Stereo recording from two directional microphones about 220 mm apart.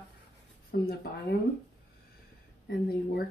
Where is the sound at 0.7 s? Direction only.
45° left (ahead or behind).